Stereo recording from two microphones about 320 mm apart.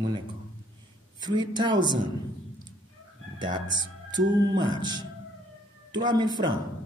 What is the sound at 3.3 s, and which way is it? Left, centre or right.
A man's voice, centre.